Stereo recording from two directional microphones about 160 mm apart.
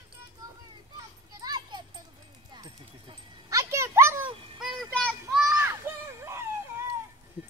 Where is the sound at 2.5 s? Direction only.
25° right (ahead or behind).